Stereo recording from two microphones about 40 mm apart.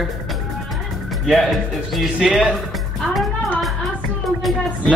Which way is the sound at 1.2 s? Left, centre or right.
Centre.